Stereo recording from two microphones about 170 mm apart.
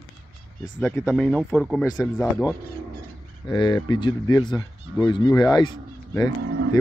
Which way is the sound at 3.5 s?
25° left (ahead or behind).